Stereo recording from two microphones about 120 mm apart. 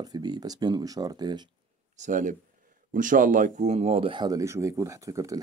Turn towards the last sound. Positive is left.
turn(degrees=-25)  # may be behind; listen again after turning